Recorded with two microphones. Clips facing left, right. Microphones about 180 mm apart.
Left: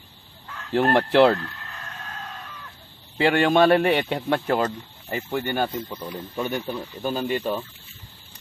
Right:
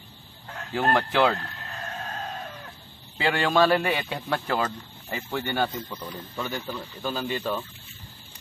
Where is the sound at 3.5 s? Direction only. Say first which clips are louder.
Left 3 dB; 25° left (ahead or behind).